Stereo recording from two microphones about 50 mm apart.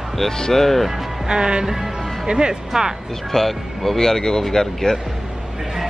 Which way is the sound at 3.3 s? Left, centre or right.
Centre.